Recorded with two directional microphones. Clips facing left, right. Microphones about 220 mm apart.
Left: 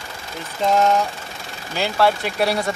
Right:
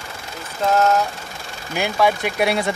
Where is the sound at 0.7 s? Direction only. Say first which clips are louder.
Even; 5° right (ahead or behind).